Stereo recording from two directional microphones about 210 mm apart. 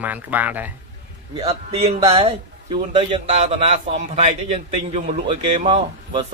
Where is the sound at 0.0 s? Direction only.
10° right (ahead or behind).